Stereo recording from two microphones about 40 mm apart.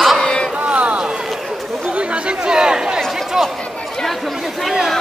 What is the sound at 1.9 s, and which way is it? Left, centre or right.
Speech, right.